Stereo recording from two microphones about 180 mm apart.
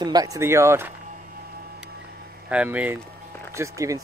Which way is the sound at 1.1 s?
55° right (ahead or behind).